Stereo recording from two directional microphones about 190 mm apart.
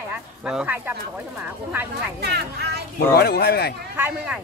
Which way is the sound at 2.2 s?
60° right (ahead or behind).